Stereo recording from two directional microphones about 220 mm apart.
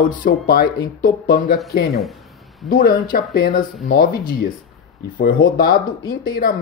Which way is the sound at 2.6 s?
40° left (ahead or behind).